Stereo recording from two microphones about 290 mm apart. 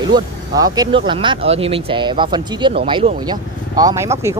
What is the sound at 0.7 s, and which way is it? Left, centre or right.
Speech, centre.